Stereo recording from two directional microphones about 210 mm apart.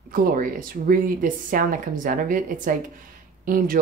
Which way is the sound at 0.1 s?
40° right (ahead or behind).